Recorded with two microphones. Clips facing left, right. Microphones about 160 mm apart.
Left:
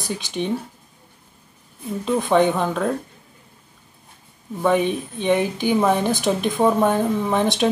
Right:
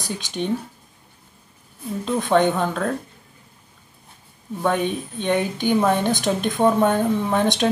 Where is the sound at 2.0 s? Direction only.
5° left (ahead or behind).